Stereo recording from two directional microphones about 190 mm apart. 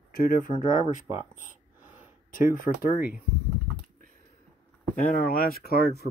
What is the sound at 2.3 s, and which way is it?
Speech, 45° left (ahead or behind).